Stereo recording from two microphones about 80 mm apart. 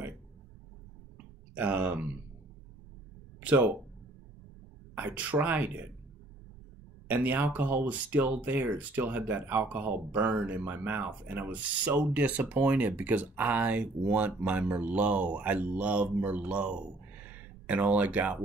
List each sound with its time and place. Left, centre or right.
1.6 s speech: centre
3.4 s speech: centre
4.9 s speech: centre
7.1 s speech: right